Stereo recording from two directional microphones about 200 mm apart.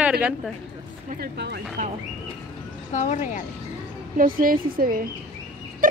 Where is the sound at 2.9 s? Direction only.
35° left (ahead or behind).